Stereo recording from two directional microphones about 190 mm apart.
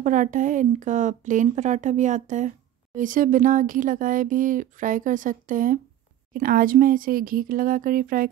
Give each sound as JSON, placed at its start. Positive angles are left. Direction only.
{"t": 0.0, "sound": "speech", "side_deg": -40}